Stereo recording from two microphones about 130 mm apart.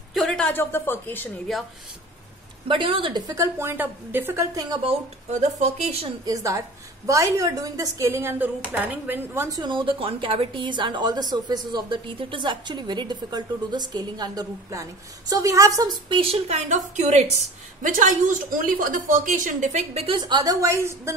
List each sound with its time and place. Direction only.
0.1 s a woman's voice: centre (ahead or behind)
2.7 s a woman's voice: 40° right (ahead or behind); by 4.5 s 15° right (ahead or behind)
5.3 s a woman's voice: 60° right (ahead or behind)
6.2 s a woman's voice: 25° right (ahead or behind)
9.6 s a woman's voice: 35° right (ahead or behind)
16.2 s a woman's voice: 50° right (ahead or behind)
17.8 s a woman's voice: 90° right; by 21.1 s 20° right (ahead or behind)